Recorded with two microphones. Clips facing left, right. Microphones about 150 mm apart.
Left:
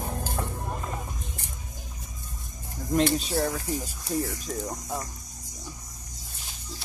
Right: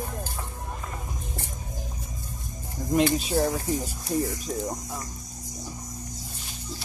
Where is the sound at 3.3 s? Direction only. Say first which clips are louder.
Right 3 dB; 20° right (ahead or behind).